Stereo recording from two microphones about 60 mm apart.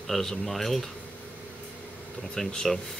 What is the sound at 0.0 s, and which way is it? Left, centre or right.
Speech, centre.